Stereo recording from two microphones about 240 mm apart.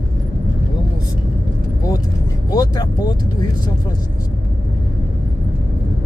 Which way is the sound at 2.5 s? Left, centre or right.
Centre.